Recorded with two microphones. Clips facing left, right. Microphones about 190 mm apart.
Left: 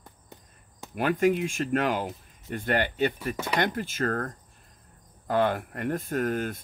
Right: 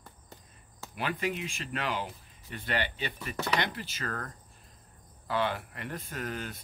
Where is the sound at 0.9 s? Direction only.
45° left (ahead or behind).